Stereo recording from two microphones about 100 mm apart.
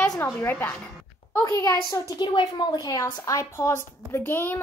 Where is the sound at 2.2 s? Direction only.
50° left (ahead or behind).